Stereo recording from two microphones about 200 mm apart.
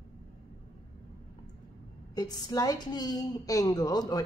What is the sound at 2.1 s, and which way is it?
A woman's voice, 20° left (ahead or behind).